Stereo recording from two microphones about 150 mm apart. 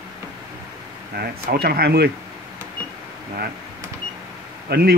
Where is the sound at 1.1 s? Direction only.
90° right.